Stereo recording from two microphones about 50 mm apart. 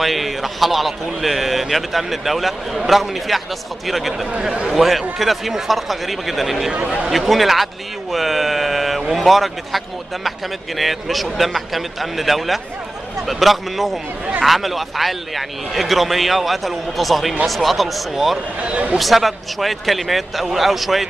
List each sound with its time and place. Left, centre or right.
0.0 s a man's voice: centre
6.7 s a man's voice: right
7.1 s a man's voice: centre
18.6 s a man's voice: right
18.9 s a man's voice: centre